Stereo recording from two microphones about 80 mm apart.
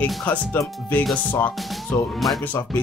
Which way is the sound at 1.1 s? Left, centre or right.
Centre.